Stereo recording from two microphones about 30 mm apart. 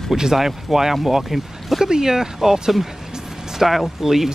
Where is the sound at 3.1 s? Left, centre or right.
Centre.